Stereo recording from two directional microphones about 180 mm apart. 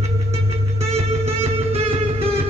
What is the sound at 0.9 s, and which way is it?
Music, 35° right (ahead or behind).